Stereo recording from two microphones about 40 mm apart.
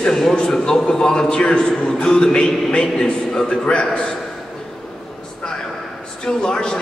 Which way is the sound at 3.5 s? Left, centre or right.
Left.